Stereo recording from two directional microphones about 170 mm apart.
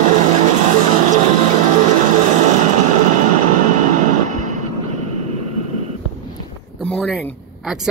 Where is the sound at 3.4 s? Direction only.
45° right (ahead or behind).